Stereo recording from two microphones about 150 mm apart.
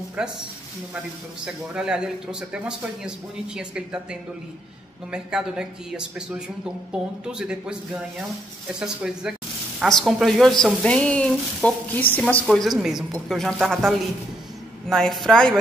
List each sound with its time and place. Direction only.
0.2 s speech: 5° right (ahead or behind)
1.4 s speech: 5° right (ahead or behind)